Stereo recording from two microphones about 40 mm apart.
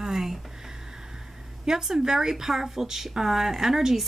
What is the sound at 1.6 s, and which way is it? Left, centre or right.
A woman's voice, centre.